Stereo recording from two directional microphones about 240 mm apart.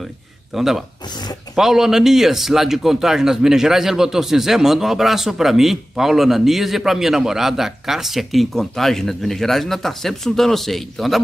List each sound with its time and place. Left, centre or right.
0.6 s speech: centre